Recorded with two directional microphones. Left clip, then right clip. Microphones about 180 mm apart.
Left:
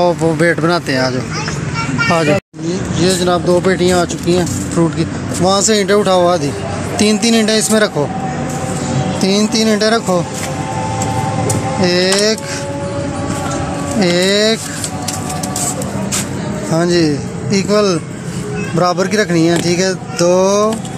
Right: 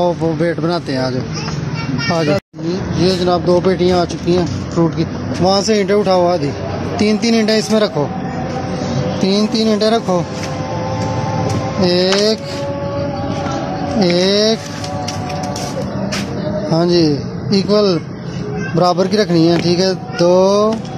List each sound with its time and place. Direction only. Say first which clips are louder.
0.2 s speech: left 4 dB; centre (ahead or behind)
2.7 s speech: left 1 dB; centre (ahead or behind)
9.2 s speech: left 2 dB; 5° right (ahead or behind)
11.8 s speech: even; 10° right (ahead or behind)
14.1 s speech: left 1 dB; 10° right (ahead or behind)
16.7 s speech: left 1 dB; 10° right (ahead or behind)